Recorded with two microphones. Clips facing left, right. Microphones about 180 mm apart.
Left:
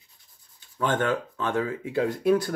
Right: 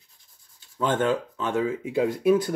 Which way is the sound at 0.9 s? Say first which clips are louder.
Right 2 dB; 20° right (ahead or behind).